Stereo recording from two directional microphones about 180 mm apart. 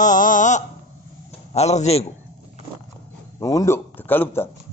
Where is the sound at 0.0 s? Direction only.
45° left (ahead or behind).